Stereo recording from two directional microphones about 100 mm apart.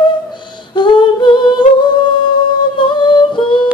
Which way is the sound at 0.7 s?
50° left (ahead or behind).